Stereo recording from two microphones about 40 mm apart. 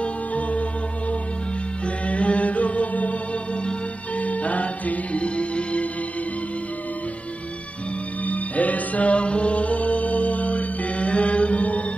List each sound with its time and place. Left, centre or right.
0.0 s music: left
2.0 s music: left
4.2 s music: left
8.3 s music: left